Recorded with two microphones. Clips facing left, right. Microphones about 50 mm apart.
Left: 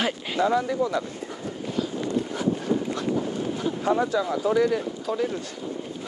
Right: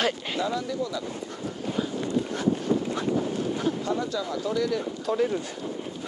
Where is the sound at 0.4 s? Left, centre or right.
Left.